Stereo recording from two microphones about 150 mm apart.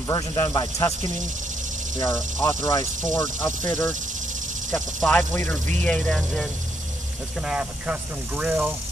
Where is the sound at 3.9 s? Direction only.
55° right (ahead or behind).